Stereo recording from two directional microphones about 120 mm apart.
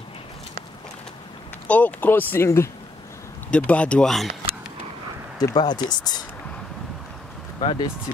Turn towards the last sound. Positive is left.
turn(degrees=45)  # may be behind; listen again after turning